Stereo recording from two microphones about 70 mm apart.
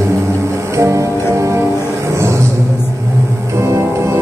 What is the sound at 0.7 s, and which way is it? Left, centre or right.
Music, right.